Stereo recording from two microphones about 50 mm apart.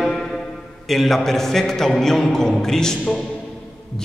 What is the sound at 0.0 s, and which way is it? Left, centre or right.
Music, centre.